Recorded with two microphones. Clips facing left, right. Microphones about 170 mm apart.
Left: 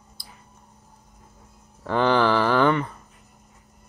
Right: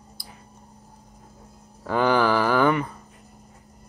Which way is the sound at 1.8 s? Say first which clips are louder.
Even; 10° right (ahead or behind).